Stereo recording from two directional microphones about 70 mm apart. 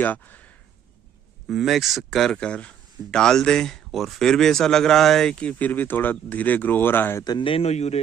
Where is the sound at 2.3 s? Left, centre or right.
Centre.